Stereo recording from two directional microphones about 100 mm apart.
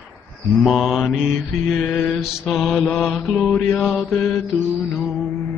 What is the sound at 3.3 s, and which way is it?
Mantra, 10° left (ahead or behind).